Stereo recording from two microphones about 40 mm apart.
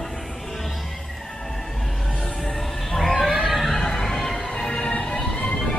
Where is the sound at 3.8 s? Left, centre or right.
Centre.